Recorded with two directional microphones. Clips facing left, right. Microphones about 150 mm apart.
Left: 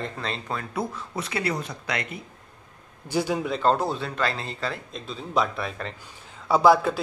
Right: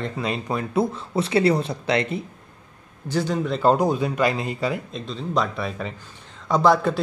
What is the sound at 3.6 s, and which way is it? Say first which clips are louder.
Speech: right 6 dB; 15° right (ahead or behind).